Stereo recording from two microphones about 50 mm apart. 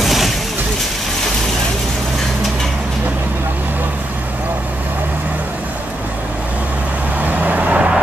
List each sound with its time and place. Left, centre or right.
0.0 s vehicle: centre
7.2 s vehicle: right